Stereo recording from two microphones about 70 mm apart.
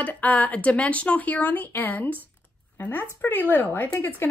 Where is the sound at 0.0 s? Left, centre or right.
Left.